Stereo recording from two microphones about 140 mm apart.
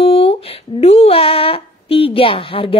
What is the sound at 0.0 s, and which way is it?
Speech, 45° left (ahead or behind).